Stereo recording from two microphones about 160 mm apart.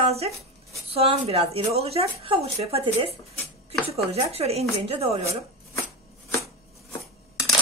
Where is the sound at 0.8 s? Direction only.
35° right (ahead or behind).